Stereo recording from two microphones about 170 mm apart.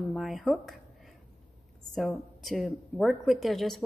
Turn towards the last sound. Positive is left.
turn(degrees=0)  # may be behind; listen again after turning